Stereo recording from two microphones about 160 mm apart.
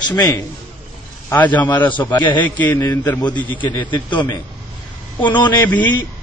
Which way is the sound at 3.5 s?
30° left (ahead or behind).